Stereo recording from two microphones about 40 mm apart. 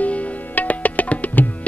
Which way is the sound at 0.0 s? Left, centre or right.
Left.